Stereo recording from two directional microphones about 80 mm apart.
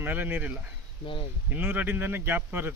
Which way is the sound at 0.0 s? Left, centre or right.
Right.